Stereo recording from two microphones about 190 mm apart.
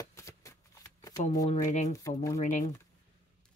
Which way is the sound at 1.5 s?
40° left (ahead or behind).